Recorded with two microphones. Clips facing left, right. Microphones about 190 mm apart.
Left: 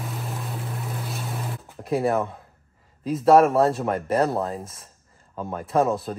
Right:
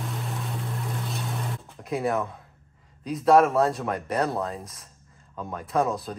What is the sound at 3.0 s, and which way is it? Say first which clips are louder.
Speech: left 3 dB; centre (ahead or behind).